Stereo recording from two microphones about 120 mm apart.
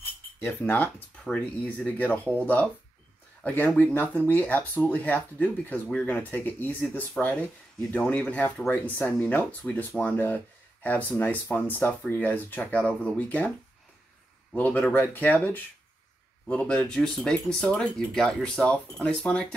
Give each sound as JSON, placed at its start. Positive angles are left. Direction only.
{"t": 0.4, "sound": "speech", "side_deg": 20}
{"t": 14.5, "sound": "speech", "side_deg": 15}